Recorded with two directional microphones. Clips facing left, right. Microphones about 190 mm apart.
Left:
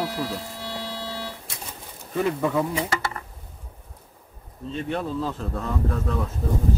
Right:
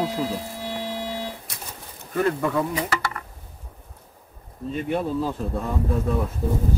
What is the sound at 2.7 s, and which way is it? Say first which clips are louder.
Insect: even; 25° left (ahead or behind).